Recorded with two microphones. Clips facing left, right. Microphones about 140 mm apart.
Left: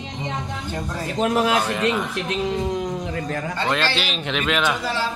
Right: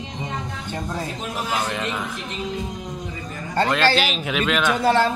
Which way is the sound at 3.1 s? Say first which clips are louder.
Left 6 dB; 80° left.